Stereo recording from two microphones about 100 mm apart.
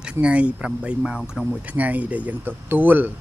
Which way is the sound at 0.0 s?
10° right (ahead or behind).